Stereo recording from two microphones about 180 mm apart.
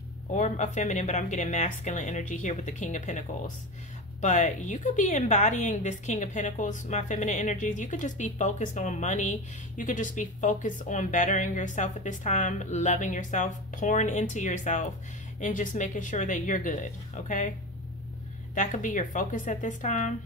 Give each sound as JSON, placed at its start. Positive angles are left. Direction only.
{"t": 0.3, "sound": "a woman's voice", "side_deg": 40}
{"t": 18.5, "sound": "a woman's voice", "side_deg": 45}